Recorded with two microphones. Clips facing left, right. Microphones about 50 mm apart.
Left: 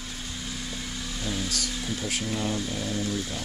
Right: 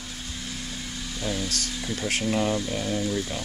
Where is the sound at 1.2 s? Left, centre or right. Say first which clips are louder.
Right 3 dB; centre.